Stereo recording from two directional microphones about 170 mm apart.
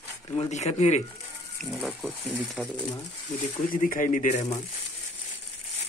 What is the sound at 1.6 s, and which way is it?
Speech, centre (ahead or behind).